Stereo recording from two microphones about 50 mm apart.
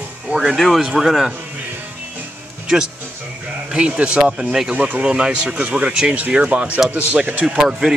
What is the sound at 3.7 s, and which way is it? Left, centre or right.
Speech, right.